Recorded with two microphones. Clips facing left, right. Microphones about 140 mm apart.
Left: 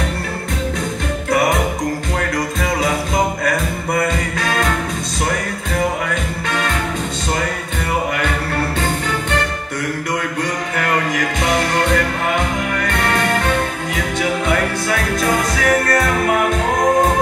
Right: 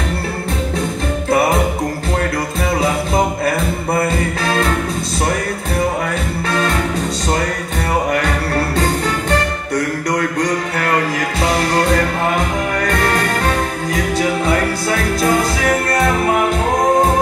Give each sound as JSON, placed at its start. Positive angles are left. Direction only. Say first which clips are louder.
{"t": 3.4, "sound": "music", "louder": "right 2 dB", "side_deg": -30}
{"t": 6.0, "sound": "music", "louder": "right 2 dB", "side_deg": -35}
{"t": 8.7, "sound": "music", "louder": "right 3 dB", "side_deg": -40}
{"t": 10.8, "sound": "music", "louder": "left 1 dB", "side_deg": -35}